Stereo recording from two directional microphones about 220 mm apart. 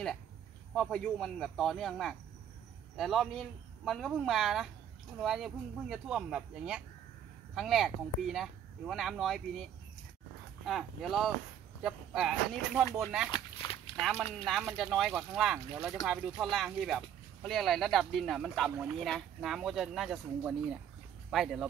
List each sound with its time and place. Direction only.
0.7 s speech: centre (ahead or behind)
13.3 s walk: 20° left (ahead or behind)
13.9 s speech: centre (ahead or behind)